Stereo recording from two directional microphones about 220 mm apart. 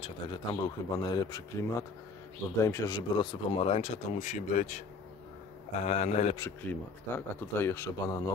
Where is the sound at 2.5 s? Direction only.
15° left (ahead or behind); by 4.8 s 35° left (ahead or behind).